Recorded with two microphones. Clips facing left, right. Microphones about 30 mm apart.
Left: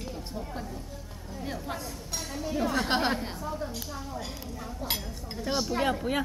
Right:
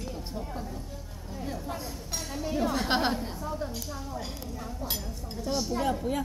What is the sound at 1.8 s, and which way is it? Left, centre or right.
A woman's voice, centre.